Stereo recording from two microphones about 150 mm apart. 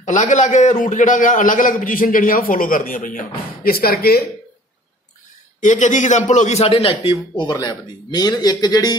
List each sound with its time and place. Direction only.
0.0 s a man's voice: 55° left (ahead or behind); by 4.2 s 90° left
5.6 s a man's voice: 55° left (ahead or behind); by 8.9 s 25° left (ahead or behind)